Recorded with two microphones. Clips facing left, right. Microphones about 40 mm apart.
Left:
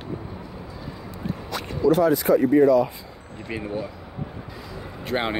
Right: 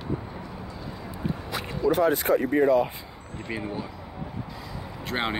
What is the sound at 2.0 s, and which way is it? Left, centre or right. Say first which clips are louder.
Speech: left 4 dB; right.